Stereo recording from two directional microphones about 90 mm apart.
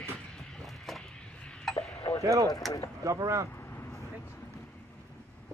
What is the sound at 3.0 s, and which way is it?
Speech, 35° right (ahead or behind).